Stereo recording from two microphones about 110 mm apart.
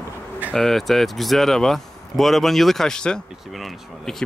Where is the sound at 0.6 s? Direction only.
5° left (ahead or behind).